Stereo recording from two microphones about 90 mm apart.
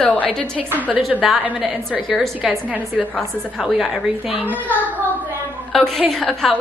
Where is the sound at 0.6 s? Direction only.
15° right (ahead or behind).